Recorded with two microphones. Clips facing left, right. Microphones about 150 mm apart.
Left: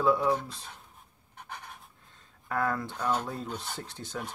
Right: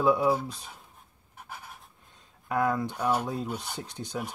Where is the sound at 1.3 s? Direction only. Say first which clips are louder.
Even; 5° right (ahead or behind).